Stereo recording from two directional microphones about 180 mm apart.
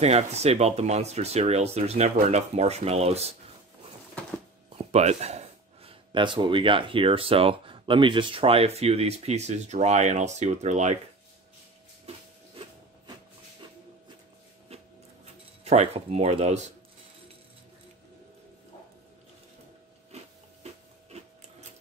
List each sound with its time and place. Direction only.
0.0 s speech: 35° right (ahead or behind)
4.7 s speech: 35° right (ahead or behind)
14.7 s rub: 35° right (ahead or behind)
15.6 s speech: 35° right (ahead or behind)
20.1 s a sound: 35° right (ahead or behind)